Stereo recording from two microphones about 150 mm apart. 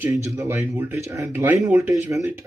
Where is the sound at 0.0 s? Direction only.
20° right (ahead or behind).